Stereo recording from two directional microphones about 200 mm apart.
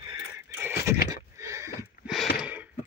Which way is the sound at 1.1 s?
15° right (ahead or behind).